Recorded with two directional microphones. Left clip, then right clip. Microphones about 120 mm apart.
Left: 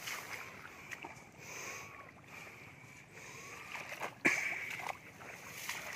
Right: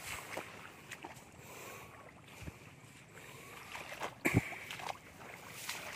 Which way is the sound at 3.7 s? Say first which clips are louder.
Even; 15° right (ahead or behind).